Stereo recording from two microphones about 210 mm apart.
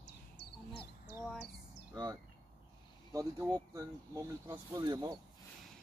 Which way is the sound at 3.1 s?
15° right (ahead or behind).